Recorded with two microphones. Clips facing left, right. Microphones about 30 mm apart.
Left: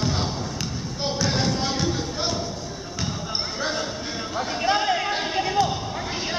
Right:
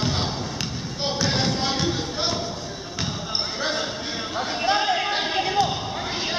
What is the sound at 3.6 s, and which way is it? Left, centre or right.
Basketball bounce, centre.